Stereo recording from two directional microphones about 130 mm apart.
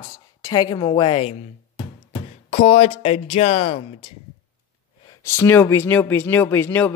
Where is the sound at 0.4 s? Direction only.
30° left (ahead or behind).